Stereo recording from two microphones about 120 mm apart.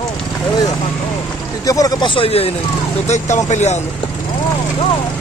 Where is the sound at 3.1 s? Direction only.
75° left (ahead or behind).